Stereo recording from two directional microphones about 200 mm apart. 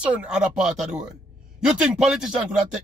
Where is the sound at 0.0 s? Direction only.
5° right (ahead or behind).